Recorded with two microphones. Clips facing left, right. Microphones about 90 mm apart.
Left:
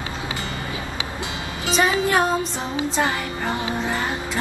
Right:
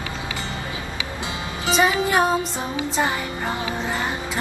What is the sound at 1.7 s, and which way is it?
Music, 15° right (ahead or behind).